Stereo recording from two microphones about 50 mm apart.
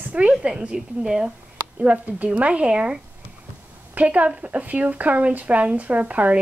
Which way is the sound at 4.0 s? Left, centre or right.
Right.